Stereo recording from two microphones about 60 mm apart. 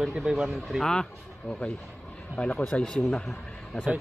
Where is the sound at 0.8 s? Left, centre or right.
Centre.